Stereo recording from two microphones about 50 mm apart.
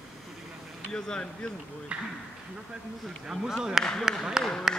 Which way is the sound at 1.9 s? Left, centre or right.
Right.